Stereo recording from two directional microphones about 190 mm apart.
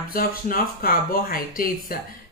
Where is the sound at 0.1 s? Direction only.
50° left (ahead or behind).